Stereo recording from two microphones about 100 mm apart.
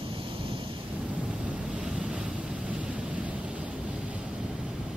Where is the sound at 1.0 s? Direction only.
10° right (ahead or behind).